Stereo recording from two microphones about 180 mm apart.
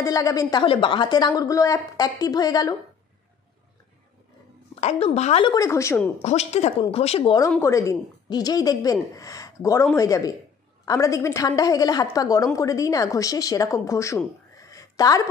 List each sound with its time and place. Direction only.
0.0 s speech: 20° left (ahead or behind)
4.7 s a woman's voice: 35° left (ahead or behind)
5.5 s a woman's voice: 15° left (ahead or behind)
6.2 s a woman's voice: 35° left (ahead or behind)
7.5 s speech: 15° left (ahead or behind)
14.7 s a sound: 20° left (ahead or behind)